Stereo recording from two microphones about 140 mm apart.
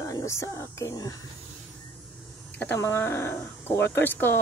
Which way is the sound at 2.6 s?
15° left (ahead or behind).